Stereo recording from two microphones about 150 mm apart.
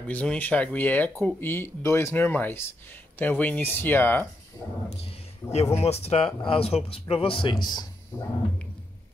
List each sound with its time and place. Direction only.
0.1 s speech: 10° left (ahead or behind)
5.5 s speech: 45° left (ahead or behind); by 7.9 s 30° left (ahead or behind)